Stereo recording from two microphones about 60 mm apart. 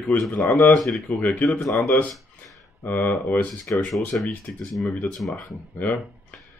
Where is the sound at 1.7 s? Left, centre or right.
Left.